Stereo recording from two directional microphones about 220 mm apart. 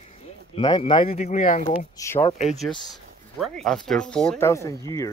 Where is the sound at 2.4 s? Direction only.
Centre (ahead or behind).